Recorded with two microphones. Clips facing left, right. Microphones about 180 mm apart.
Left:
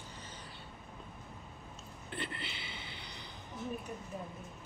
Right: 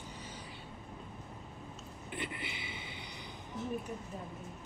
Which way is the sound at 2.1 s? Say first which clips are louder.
Right 1 dB; 15° right (ahead or behind).